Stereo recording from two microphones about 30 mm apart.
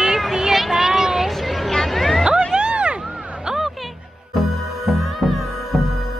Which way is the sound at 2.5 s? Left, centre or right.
Right.